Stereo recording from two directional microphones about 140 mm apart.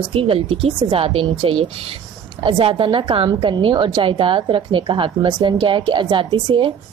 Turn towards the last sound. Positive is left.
turn(degrees=-35)  # may be behind; listen again after turning